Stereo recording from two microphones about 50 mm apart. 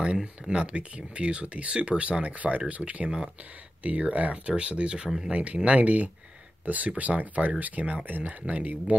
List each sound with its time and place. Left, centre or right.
0.0 s speech: centre